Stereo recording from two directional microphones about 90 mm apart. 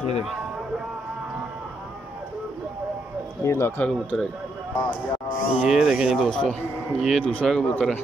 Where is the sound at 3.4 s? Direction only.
30° left (ahead or behind).